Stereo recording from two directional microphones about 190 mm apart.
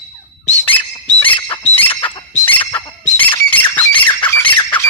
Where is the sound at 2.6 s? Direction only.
15° left (ahead or behind).